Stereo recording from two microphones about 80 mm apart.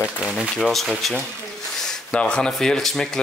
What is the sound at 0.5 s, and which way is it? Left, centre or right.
Speech, centre.